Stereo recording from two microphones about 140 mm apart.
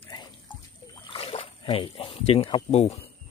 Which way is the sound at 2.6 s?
50° left (ahead or behind).